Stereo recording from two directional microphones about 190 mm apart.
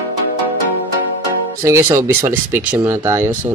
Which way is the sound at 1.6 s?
15° right (ahead or behind).